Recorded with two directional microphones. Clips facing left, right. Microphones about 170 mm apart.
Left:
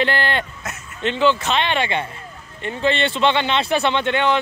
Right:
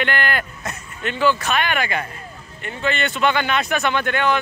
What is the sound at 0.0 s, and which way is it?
Speech, 30° left (ahead or behind).